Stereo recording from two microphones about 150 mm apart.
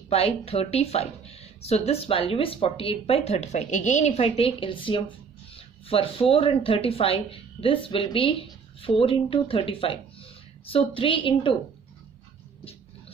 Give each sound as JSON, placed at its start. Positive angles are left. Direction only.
{"t": 0.1, "sound": "speech", "side_deg": 40}